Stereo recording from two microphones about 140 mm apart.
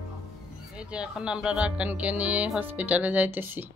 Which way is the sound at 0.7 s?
5° right (ahead or behind).